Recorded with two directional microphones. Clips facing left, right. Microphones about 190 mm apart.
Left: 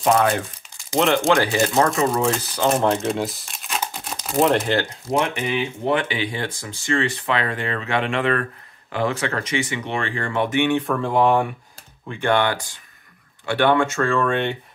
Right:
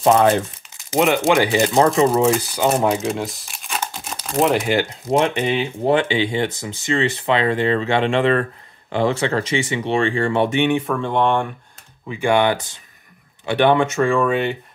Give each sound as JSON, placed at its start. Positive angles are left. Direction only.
{"t": 0.0, "sound": "speech", "side_deg": -25}
{"t": 0.8, "sound": "speech", "side_deg": -10}
{"t": 2.3, "sound": "speech", "side_deg": -10}
{"t": 5.1, "sound": "speech", "side_deg": -25}
{"t": 10.9, "sound": "speech", "side_deg": 0}
{"t": 12.1, "sound": "speech", "side_deg": -10}